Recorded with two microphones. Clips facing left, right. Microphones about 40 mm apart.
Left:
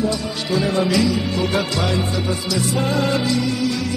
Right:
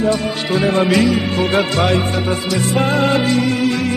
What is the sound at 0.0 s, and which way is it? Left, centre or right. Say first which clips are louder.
Music: right 5 dB; right.